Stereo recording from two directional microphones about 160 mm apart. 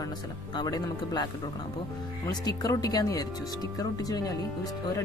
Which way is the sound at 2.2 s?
25° left (ahead or behind).